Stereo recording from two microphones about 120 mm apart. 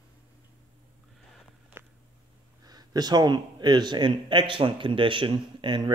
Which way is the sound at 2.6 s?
35° right (ahead or behind).